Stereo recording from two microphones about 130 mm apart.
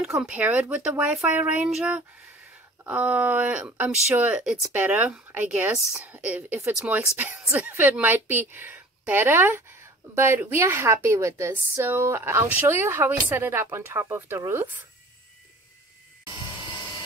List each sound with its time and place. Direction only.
0.0 s speech: 5° right (ahead or behind)